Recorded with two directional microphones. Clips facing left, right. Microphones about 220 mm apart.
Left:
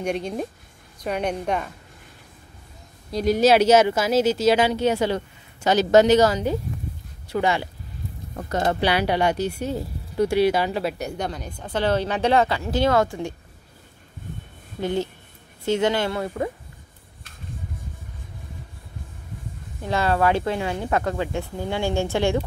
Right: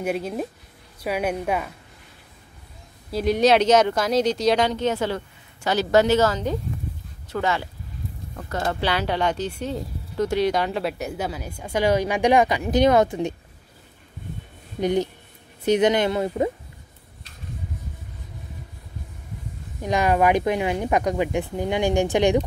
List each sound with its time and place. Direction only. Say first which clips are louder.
0.0 s speech: even; 5° right (ahead or behind)
3.1 s speech: left 1 dB; centre (ahead or behind); by 13.3 s 20° right (ahead or behind)
14.8 s speech: right 3 dB; 15° right (ahead or behind)
19.8 s speech: right 2 dB; 15° right (ahead or behind)